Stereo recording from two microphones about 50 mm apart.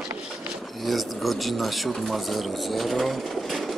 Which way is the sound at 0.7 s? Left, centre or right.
Centre.